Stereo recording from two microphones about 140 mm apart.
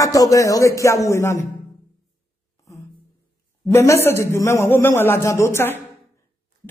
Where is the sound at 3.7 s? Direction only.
20° left (ahead or behind).